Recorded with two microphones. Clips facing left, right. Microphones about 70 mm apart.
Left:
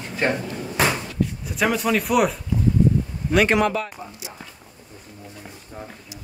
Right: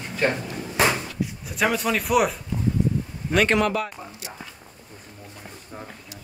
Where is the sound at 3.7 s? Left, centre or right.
Right.